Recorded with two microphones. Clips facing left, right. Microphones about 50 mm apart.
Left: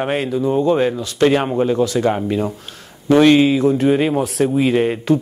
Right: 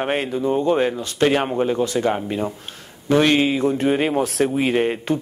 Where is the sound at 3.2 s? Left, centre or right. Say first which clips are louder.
Left 6 dB; right.